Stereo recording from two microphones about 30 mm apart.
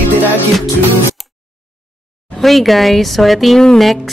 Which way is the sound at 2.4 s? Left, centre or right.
Centre.